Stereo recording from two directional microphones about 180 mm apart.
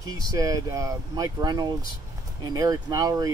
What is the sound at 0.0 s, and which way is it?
Speech, 20° right (ahead or behind).